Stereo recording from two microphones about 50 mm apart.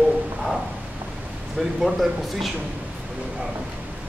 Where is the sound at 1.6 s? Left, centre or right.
Centre.